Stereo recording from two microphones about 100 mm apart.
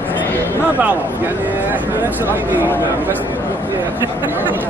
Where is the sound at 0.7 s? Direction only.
15° right (ahead or behind).